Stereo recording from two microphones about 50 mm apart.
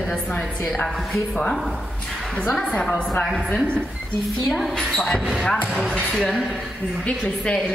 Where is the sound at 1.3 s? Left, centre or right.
Centre.